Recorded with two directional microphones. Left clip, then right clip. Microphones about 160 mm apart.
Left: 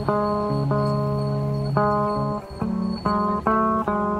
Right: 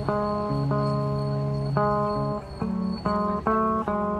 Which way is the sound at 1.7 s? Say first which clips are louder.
Left 3 dB; 15° left (ahead or behind).